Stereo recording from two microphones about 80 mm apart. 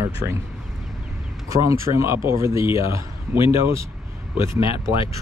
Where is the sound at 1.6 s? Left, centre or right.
Right.